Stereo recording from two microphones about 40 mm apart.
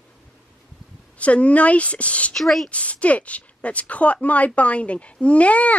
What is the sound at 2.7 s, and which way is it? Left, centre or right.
A woman's voice, left.